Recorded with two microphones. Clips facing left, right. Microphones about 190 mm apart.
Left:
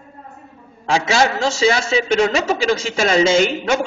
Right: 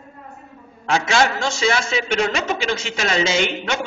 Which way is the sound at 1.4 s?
35° left (ahead or behind).